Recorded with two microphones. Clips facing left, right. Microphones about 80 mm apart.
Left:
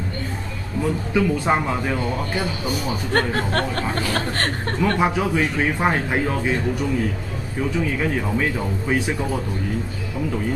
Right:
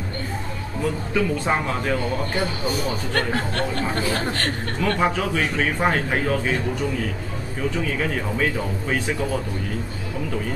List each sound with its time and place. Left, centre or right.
1.1 s a man's voice: centre
3.1 s speech: left
4.9 s a man's voice: centre
8.0 s a man's voice: centre